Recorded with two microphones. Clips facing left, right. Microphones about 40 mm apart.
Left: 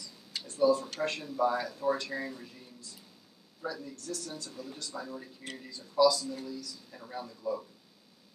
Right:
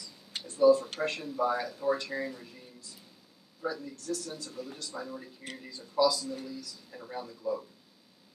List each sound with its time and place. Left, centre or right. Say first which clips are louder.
0.6 s speech: right 4 dB; centre
3.6 s speech: right 3 dB; centre